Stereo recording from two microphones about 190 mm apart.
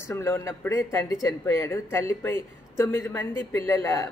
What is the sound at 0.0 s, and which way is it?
A man's voice, 15° left (ahead or behind).